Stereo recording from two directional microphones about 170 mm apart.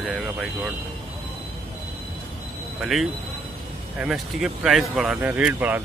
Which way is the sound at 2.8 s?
Centre (ahead or behind).